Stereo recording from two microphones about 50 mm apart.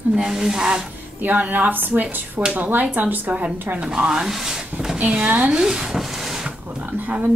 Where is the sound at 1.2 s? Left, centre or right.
Right; by 4.3 s centre.